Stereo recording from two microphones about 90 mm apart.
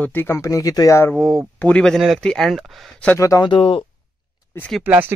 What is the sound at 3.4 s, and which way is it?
Speech, 75° left (ahead or behind).